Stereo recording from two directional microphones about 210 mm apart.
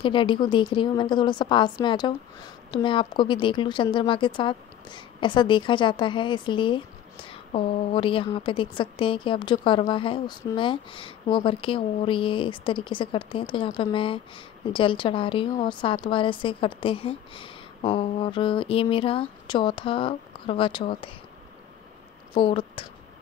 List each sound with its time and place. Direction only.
0.0 s a woman's voice: 25° left (ahead or behind)
22.3 s speech: 25° left (ahead or behind)